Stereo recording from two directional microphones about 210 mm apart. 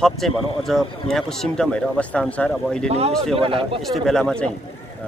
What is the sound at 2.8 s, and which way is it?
Speech, 30° right (ahead or behind).